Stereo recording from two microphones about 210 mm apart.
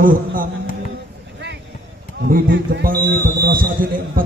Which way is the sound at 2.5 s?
55° right (ahead or behind).